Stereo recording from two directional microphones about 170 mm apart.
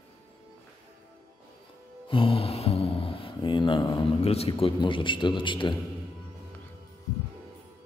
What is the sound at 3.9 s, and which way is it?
A man's voice, 35° left (ahead or behind).